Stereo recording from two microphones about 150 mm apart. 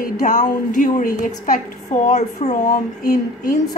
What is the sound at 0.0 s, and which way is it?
A woman's voice, 60° left (ahead or behind).